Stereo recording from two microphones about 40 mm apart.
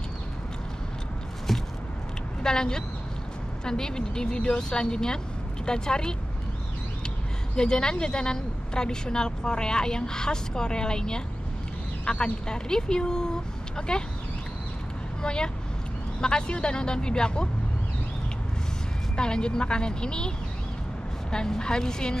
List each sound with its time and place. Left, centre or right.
1.5 s a sound: centre
2.4 s a woman's voice: centre
7.5 s a woman's voice: centre
15.2 s a woman's voice: centre
19.1 s a woman's voice: centre